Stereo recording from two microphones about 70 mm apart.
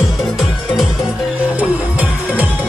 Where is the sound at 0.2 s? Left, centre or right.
Centre.